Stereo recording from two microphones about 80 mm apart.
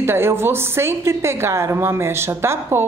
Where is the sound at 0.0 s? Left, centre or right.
Right.